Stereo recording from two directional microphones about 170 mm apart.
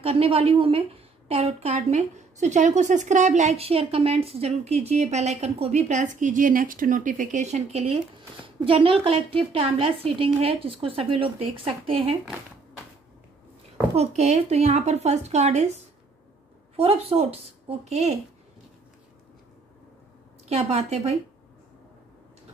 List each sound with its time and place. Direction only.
0.0 s a woman's voice: 35° right (ahead or behind)
13.9 s a woman's voice: 40° right (ahead or behind)
20.4 s a woman's voice: 40° right (ahead or behind)